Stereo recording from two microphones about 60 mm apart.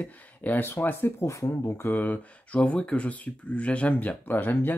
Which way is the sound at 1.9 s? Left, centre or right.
Left.